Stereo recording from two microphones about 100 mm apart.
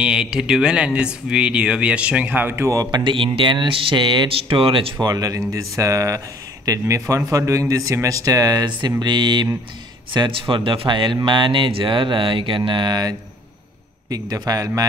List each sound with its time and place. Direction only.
0.0 s speech: 10° right (ahead or behind); by 2.8 s 25° right (ahead or behind)
2.8 s speech: 50° right (ahead or behind)
5.0 s speech: 35° right (ahead or behind)
14.1 s speech: 40° right (ahead or behind)